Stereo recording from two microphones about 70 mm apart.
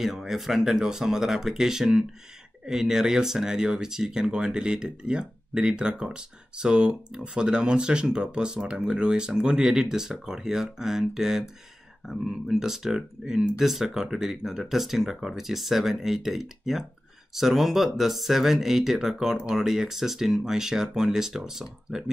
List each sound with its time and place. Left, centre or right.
0.0 s speech: centre